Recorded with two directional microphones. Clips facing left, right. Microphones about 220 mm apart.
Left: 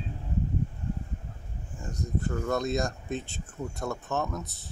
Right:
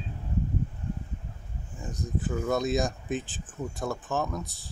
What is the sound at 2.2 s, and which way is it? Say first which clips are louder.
Speech: right 2 dB; 5° right (ahead or behind).